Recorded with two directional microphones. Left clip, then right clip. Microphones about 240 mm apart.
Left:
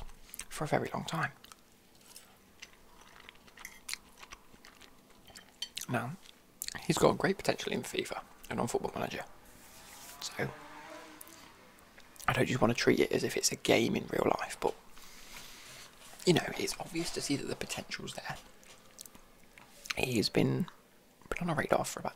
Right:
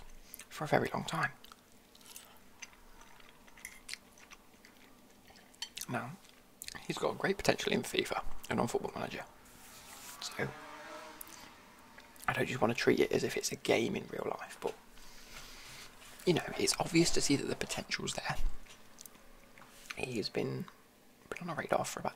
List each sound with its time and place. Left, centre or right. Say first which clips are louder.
0.4 s speech: right 1 dB; centre
3.8 s chewing: left 7 dB; centre
5.3 s cutlery: left 3 dB; centre
6.6 s chewing: left 8 dB; centre
7.2 s speech: right 1 dB; centre
10.1 s music: left 1 dB; centre
12.3 s speech: left 3 dB; centre
14.1 s a sound: left 8 dB; left
15.8 s a sound: left 2 dB; centre
16.6 s speech: right 7 dB; right
19.9 s speech: left 6 dB; centre